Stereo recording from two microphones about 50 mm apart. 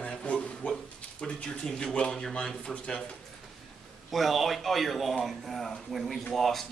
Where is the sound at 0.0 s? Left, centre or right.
Left.